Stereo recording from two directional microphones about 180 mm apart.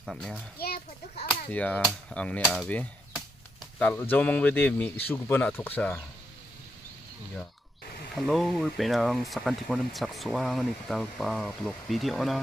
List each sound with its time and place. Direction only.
0.0 s speech: centre (ahead or behind)
0.6 s a child's voice: 60° left (ahead or behind)
1.5 s speech: 10° left (ahead or behind)
8.1 s speech: centre (ahead or behind)